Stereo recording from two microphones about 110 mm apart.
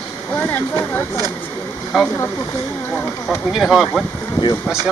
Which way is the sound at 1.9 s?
Centre (ahead or behind).